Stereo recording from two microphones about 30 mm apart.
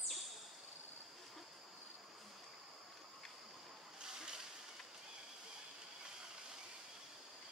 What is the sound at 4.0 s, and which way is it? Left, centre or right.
Boat, right.